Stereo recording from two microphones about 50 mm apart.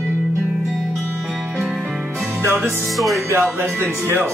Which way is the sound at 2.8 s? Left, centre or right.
Centre.